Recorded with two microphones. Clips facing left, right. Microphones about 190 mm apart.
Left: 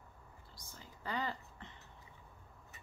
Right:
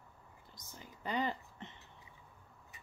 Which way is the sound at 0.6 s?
20° right (ahead or behind).